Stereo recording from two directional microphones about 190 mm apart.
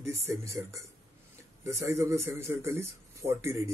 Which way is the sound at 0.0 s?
15° right (ahead or behind).